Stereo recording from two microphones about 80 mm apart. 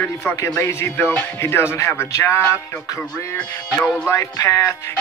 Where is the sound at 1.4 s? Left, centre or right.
Left.